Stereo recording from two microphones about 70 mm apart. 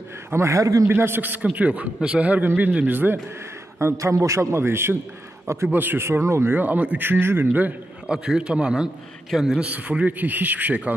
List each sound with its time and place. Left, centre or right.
0.3 s a man's voice: right
0.8 s a man's voice: right
3.9 s a man's voice: right
6.5 s a man's voice: right
8.1 s a man's voice: centre
9.3 s a man's voice: centre
9.6 s a man's voice: right